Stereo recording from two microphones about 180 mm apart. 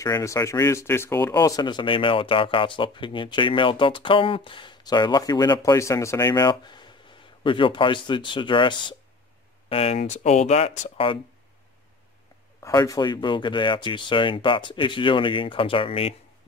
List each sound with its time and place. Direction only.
0.0 s speech: 15° left (ahead or behind); by 11.1 s 35° left (ahead or behind)
12.5 s speech: 15° left (ahead or behind)